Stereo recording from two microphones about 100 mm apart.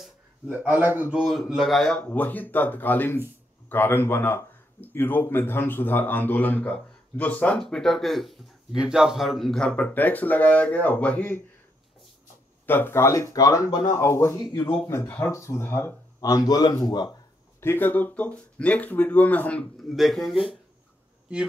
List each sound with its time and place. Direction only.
0.5 s a man's voice: 15° right (ahead or behind)
1.5 s speech: centre (ahead or behind)
2.0 s speech: 15° left (ahead or behind)
12.6 s speech: 20° left (ahead or behind); by 17.1 s 45° left (ahead or behind)
17.6 s speech: 20° left (ahead or behind)
19.8 s speech: centre (ahead or behind)